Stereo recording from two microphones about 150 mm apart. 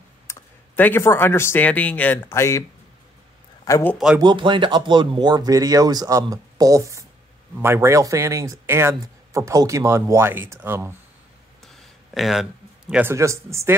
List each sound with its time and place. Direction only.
0.3 s speech: 15° left (ahead or behind)
3.6 s a man's voice: 20° left (ahead or behind)
4.2 s speech: 30° right (ahead or behind); by 11.0 s 15° right (ahead or behind)
11.6 s a sound: centre (ahead or behind)
13.1 s speech: 20° right (ahead or behind)